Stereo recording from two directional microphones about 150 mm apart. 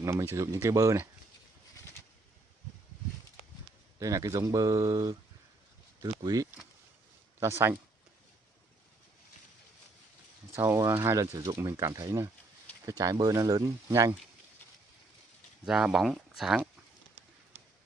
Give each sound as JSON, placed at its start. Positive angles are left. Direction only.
{"t": 0.0, "sound": "speech", "side_deg": -20}
{"t": 4.0, "sound": "speech", "side_deg": -20}
{"t": 10.5, "sound": "speech", "side_deg": -20}
{"t": 15.6, "sound": "speech", "side_deg": -5}